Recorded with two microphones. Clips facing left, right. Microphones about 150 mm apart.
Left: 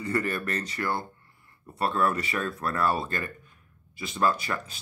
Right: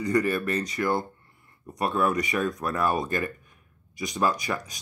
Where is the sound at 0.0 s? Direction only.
15° right (ahead or behind).